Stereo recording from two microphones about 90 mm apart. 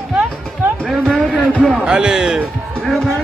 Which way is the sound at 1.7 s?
10° right (ahead or behind).